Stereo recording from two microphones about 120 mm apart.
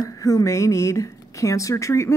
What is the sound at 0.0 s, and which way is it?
A woman's voice, 30° left (ahead or behind).